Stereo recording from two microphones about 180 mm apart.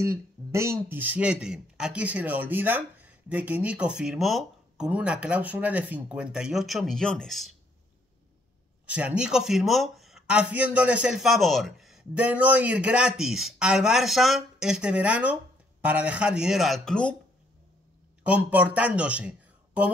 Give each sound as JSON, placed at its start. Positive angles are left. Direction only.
{"t": 0.0, "sound": "speech", "side_deg": -15}
{"t": 8.8, "sound": "speech", "side_deg": -5}
{"t": 18.2, "sound": "speech", "side_deg": -10}